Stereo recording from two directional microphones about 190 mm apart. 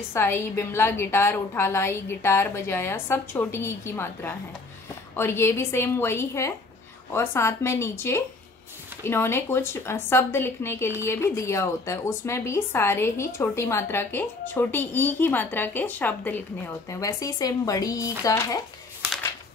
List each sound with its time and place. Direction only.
0.1 s a woman's voice: 15° left (ahead or behind)